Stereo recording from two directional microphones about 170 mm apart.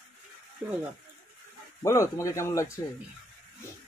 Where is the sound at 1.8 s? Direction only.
15° left (ahead or behind).